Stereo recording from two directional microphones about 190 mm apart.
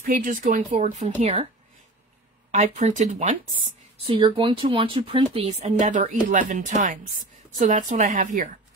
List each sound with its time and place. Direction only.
0.0 s speech: 45° right (ahead or behind)
2.5 s speech: 40° right (ahead or behind)
4.1 s speech: 25° right (ahead or behind); by 8.5 s 40° right (ahead or behind)